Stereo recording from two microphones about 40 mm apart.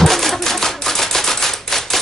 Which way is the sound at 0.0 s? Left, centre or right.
Centre.